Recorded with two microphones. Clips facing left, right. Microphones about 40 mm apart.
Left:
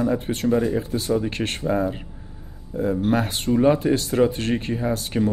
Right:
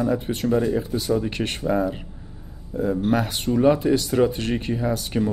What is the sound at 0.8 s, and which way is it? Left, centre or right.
Speech, left.